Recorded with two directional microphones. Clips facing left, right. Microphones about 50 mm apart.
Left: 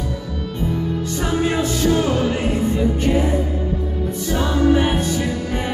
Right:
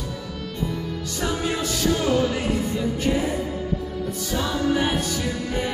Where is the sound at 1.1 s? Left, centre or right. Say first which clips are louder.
Left 5 dB; left.